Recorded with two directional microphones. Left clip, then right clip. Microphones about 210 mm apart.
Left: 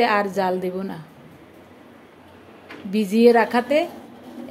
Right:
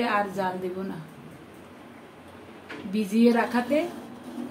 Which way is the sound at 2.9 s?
35° left (ahead or behind).